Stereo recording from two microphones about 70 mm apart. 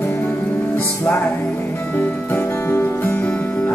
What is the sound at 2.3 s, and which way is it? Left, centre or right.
Music, left.